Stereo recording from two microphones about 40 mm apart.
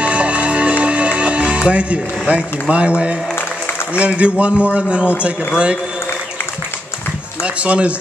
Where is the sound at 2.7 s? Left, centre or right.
Right.